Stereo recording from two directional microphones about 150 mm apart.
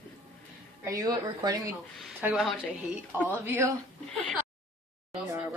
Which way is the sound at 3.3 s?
15° right (ahead or behind).